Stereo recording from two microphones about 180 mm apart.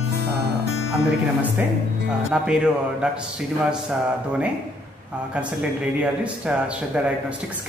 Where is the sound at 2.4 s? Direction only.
5° right (ahead or behind).